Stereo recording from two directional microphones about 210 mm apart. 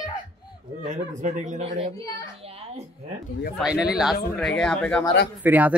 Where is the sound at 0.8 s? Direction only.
35° right (ahead or behind).